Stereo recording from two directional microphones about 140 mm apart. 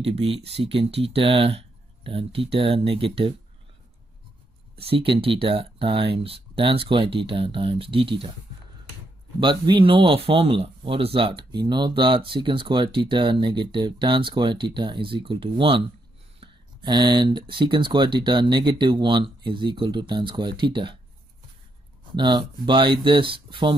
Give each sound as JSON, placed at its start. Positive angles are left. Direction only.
{"t": 0.0, "sound": "speech", "side_deg": -45}
{"t": 4.7, "sound": "speech", "side_deg": -40}
{"t": 9.4, "sound": "speech", "side_deg": -35}
{"t": 22.1, "sound": "speech", "side_deg": -30}